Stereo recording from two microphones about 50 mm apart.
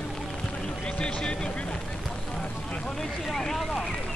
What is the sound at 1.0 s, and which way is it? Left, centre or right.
Vehicle, centre.